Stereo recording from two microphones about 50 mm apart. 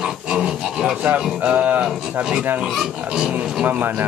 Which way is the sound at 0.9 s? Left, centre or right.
Right.